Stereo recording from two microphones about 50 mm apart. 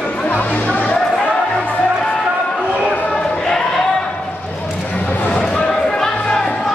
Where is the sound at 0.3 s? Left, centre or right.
Left.